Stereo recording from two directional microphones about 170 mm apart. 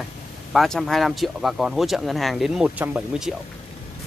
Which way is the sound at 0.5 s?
Centre (ahead or behind).